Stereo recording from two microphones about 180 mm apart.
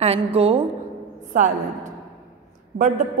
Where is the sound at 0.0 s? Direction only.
35° right (ahead or behind).